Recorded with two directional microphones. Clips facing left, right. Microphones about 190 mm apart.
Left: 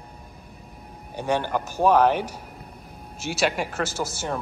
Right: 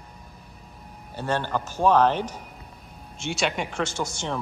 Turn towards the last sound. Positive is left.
turn(degrees=5)  # may be behind; listen again after turning